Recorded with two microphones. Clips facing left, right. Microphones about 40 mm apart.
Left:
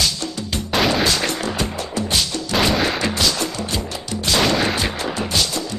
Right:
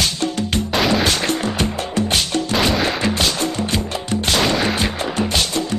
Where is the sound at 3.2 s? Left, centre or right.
Right.